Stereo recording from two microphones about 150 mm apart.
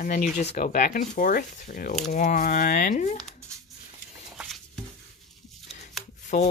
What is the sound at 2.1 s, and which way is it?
Speech, 55° left (ahead or behind).